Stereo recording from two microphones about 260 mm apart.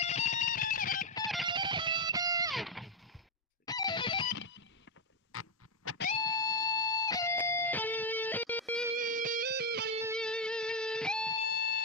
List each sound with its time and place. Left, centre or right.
0.0 s music: left
1.5 s music: centre
2.5 s guitar: centre
3.6 s music: centre
5.3 s music: left
6.2 s music: centre
8.9 s music: right
10.1 s music: centre
11.4 s fire alarm: left